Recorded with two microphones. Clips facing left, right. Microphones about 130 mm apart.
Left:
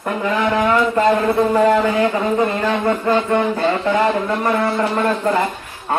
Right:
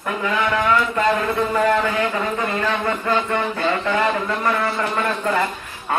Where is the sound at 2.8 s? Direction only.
25° left (ahead or behind).